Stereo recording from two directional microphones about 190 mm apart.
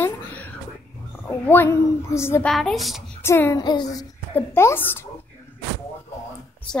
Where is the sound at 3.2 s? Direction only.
15° left (ahead or behind).